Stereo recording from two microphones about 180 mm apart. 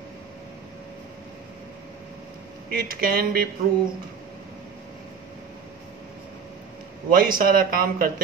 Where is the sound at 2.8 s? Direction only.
55° right (ahead or behind).